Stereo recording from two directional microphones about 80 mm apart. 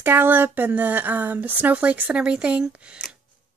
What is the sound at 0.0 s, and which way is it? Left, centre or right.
Speech, right.